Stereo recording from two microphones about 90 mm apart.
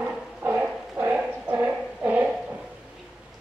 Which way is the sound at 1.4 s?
15° right (ahead or behind).